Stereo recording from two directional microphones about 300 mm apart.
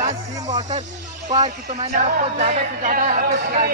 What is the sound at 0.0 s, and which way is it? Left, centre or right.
Music, right.